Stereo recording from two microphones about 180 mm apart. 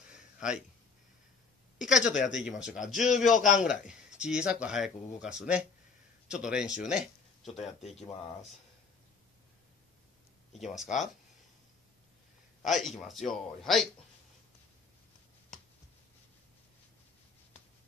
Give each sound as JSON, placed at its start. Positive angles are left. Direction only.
{"t": 0.1, "sound": "a sound", "side_deg": -5}
{"t": 1.8, "sound": "a woman's voice", "side_deg": -5}
{"t": 2.9, "sound": "a man's voice", "side_deg": 45}
{"t": 4.2, "sound": "speech", "side_deg": -5}
{"t": 8.0, "sound": "speech", "side_deg": 35}
{"t": 10.5, "sound": "speech", "side_deg": 0}
{"t": 12.6, "sound": "speech", "side_deg": 0}